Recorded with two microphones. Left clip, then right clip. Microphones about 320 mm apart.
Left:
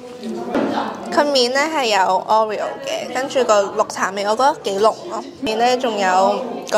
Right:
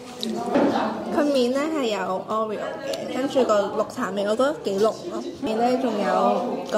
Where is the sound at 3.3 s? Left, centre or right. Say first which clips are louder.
Left 5 dB; left.